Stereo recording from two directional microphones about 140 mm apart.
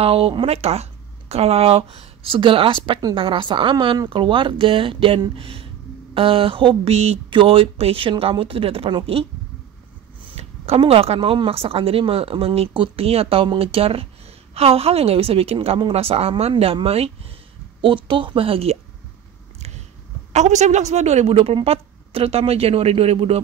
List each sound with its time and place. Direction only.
0.0 s speech: 40° right (ahead or behind)
10.2 s speech: 45° right (ahead or behind)
20.3 s speech: 55° right (ahead or behind)